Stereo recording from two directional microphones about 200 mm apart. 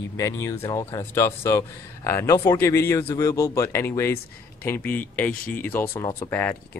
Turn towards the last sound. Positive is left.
turn(degrees=10)  # may be behind; listen again after turning